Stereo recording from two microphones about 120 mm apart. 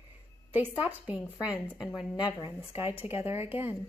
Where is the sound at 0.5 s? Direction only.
15° right (ahead or behind).